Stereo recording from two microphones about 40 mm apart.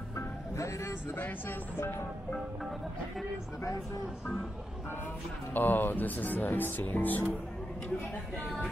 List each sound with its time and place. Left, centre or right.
5.5 s speech: left